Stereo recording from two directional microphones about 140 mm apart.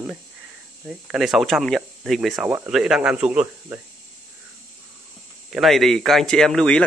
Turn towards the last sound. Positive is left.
turn(degrees=5)  # may be behind; listen again after turning